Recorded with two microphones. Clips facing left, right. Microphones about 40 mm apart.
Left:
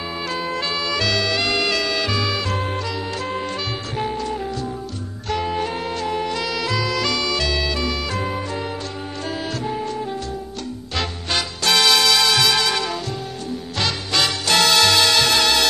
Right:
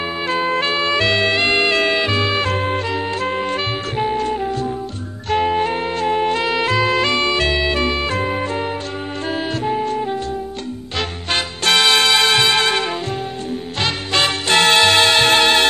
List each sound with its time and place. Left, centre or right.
0.3 s music: right
5.3 s music: right